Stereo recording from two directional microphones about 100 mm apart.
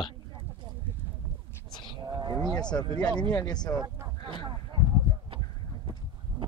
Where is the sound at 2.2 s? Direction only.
45° right (ahead or behind).